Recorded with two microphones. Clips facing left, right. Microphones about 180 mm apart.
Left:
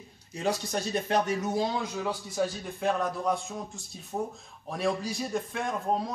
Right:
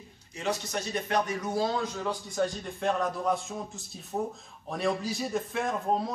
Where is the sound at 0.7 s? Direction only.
30° left (ahead or behind).